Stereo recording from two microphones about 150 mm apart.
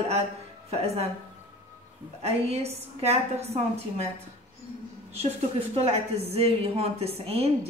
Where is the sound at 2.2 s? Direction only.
45° right (ahead or behind).